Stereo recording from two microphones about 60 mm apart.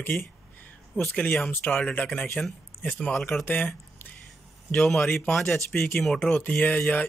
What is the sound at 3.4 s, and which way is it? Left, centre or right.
Speech, left.